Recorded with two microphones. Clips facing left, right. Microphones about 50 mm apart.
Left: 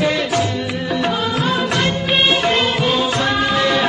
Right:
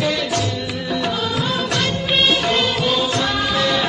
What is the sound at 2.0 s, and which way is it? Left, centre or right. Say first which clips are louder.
Music of bollywood: left 1 dB; centre.